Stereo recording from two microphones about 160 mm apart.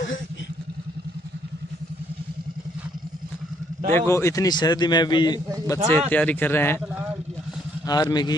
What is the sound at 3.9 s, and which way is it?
A man's voice, 15° left (ahead or behind).